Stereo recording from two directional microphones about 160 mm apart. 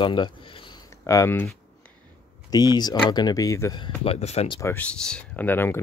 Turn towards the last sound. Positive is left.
turn(degrees=15)  # may be behind; listen again after turning